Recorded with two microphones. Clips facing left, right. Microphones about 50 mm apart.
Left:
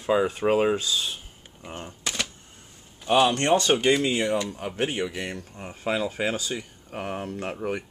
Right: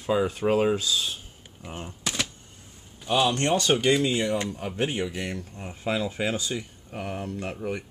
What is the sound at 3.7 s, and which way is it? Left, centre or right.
Speech, centre.